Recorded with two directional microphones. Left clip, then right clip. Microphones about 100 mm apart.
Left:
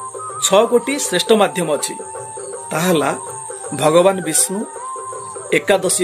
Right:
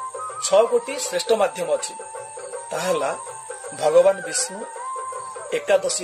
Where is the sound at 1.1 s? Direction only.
5° left (ahead or behind).